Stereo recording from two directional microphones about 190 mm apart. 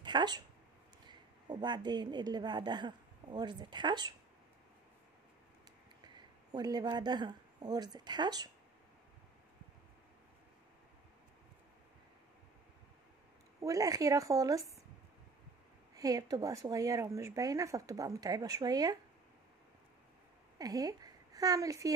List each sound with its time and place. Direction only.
0.0 s a woman's voice: 25° right (ahead or behind)
6.5 s a woman's voice: 20° right (ahead or behind)
13.6 s speech: 15° right (ahead or behind)
15.9 s speech: 20° right (ahead or behind)
20.5 s a woman's voice: 20° right (ahead or behind)